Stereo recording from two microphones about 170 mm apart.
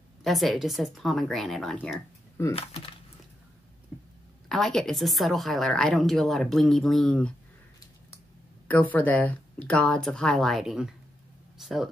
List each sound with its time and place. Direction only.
0.2 s a woman's voice: centre (ahead or behind)
4.5 s a woman's voice: centre (ahead or behind)
8.6 s a woman's voice: 10° left (ahead or behind)